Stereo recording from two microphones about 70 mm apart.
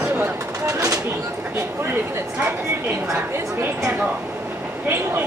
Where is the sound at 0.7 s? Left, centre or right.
Right.